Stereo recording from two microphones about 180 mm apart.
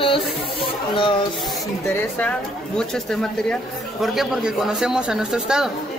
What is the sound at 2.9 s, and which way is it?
Speech, 5° left (ahead or behind).